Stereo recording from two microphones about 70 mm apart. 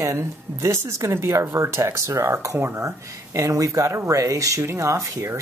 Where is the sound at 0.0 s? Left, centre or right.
Right.